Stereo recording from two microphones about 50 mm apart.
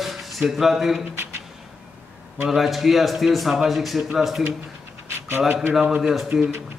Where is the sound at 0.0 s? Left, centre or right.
Centre.